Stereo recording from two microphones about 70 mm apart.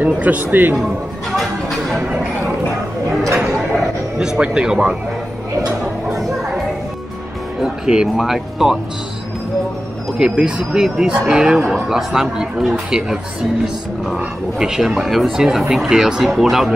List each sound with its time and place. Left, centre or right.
0.0 s speech: right
1.3 s a sound: centre
2.0 s speech: centre
3.3 s music: centre
7.6 s speech: centre
10.4 s speech: centre